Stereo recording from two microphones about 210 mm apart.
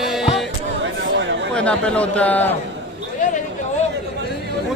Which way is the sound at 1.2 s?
60° right (ahead or behind).